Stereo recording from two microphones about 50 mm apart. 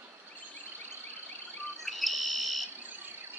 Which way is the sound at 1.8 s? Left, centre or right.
Centre.